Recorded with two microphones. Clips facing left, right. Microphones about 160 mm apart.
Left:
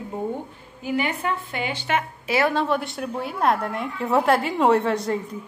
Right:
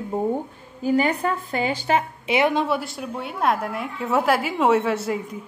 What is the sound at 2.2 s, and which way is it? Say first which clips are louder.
Speech: left 1 dB; 20° right (ahead or behind).